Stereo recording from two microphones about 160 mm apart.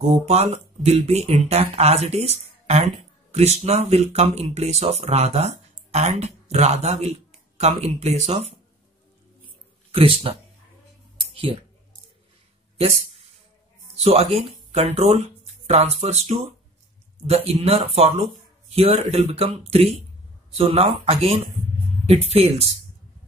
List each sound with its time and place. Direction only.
0.0 s speech: 40° right (ahead or behind)
9.8 s speech: 35° right (ahead or behind)
14.0 s speech: 40° right (ahead or behind)